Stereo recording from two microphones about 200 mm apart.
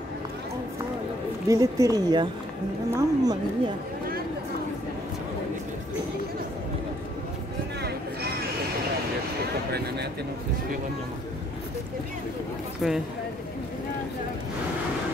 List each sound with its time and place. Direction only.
1.5 s a woman's voice: 15° right (ahead or behind)
9.7 s speech: 55° right (ahead or behind)
12.8 s speech: centre (ahead or behind)